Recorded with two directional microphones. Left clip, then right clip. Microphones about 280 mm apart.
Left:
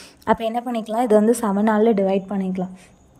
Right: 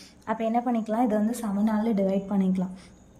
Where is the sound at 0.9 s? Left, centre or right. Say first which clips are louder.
Left 12 dB; centre.